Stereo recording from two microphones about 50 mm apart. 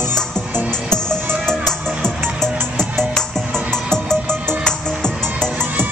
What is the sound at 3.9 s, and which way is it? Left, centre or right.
Music, centre.